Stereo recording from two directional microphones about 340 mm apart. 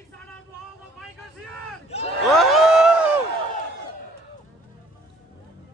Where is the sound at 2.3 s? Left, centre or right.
Centre.